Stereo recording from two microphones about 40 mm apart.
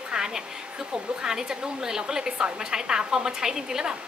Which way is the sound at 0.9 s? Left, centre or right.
Centre.